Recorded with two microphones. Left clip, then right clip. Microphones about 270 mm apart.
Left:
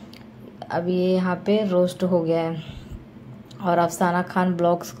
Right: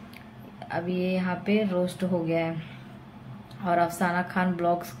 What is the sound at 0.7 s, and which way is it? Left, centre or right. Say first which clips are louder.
A woman's voice: left 7 dB; centre.